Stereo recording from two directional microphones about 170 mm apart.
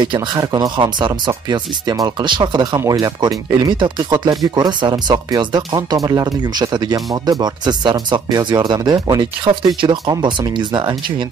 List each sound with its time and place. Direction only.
0.0 s speech: 25° right (ahead or behind)